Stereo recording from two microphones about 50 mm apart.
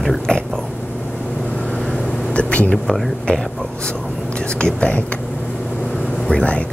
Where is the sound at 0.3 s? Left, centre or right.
Centre.